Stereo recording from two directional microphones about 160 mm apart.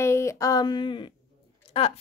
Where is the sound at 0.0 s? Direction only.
15° left (ahead or behind).